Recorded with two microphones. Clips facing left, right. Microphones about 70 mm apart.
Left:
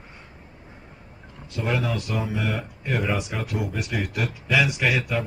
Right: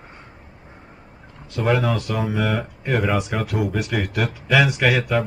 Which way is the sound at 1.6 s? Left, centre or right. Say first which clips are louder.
Right 6 dB; right.